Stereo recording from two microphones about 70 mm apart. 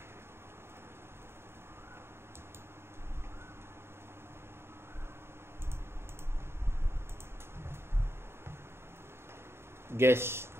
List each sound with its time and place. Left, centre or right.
9.8 s speech: right